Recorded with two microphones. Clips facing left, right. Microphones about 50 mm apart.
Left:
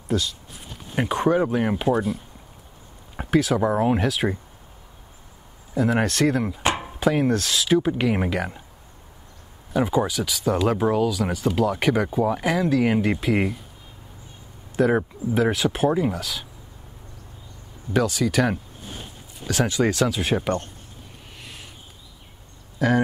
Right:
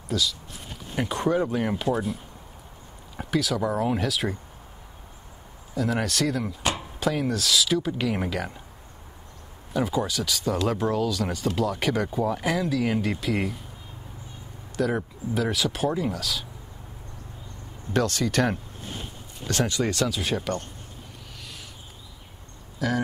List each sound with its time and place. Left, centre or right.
0.1 s speech: left
0.9 s speech: centre
3.2 s speech: left
4.1 s speech: centre
5.8 s speech: left
7.5 s speech: left
9.8 s speech: centre
14.8 s speech: left
17.9 s speech: centre
19.7 s speech: centre
21.4 s a sound: left
22.8 s speech: left